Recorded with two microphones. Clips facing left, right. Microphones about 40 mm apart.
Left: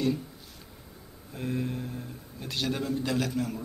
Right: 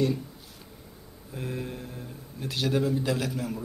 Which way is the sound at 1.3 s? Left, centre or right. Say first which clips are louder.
Left 3 dB; centre.